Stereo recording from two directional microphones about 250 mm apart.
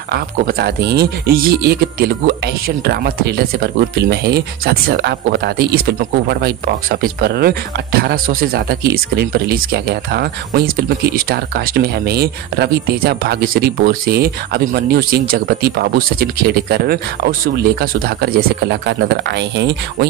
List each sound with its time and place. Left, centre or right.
0.1 s speech: right